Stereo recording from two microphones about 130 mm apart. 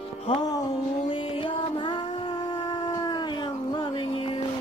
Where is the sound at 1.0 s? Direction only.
45° left (ahead or behind).